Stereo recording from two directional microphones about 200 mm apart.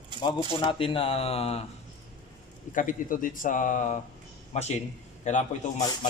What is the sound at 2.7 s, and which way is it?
A man's voice, 40° left (ahead or behind).